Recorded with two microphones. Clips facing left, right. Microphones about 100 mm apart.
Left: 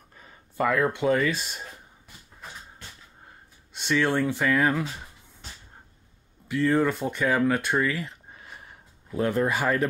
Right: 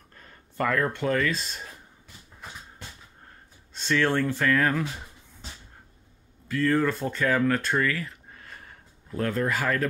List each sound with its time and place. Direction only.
0.1 s speech: 5° left (ahead or behind)
3.7 s speech: 15° left (ahead or behind)
6.4 s speech: 15° left (ahead or behind)